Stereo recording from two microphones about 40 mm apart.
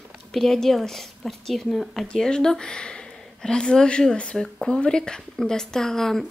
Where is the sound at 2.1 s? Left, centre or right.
Centre.